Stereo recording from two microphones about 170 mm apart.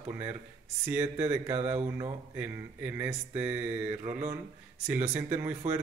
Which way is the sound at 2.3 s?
10° right (ahead or behind).